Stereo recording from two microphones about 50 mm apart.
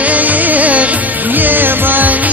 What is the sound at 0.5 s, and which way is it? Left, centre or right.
Music, right.